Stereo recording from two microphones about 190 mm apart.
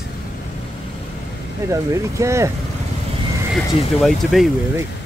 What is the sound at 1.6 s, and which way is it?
Speech, 15° right (ahead or behind).